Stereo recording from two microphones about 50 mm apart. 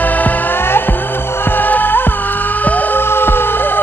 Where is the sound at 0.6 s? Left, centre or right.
Left.